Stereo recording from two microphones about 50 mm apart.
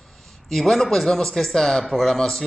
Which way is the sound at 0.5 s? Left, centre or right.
Centre.